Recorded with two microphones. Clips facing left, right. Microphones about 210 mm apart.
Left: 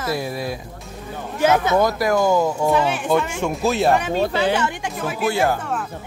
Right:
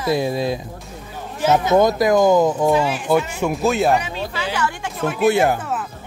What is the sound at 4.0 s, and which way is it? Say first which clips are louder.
Speech: left 7 dB; 50° left (ahead or behind).